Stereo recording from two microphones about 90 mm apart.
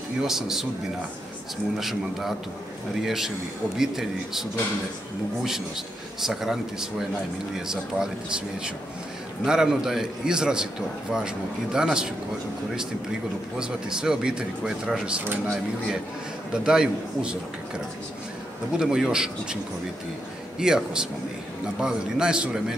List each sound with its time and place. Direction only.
0.2 s a man's voice: 5° right (ahead or behind)
1.8 s a man's voice: 5° right (ahead or behind)
6.2 s a man's voice: 5° right (ahead or behind)
9.4 s a man's voice: 5° right (ahead or behind)
13.6 s a man's voice: 10° right (ahead or behind)
16.5 s a man's voice: 10° right (ahead or behind)
18.8 s a man's voice: 10° right (ahead or behind)